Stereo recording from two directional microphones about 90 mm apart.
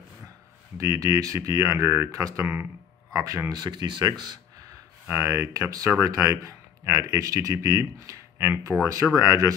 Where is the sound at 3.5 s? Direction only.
55° right (ahead or behind).